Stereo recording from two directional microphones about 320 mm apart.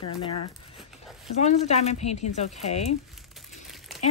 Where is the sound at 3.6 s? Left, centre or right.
Centre.